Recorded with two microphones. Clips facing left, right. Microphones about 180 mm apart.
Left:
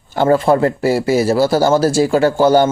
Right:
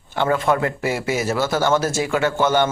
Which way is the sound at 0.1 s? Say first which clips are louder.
Left 7 dB; 35° left (ahead or behind).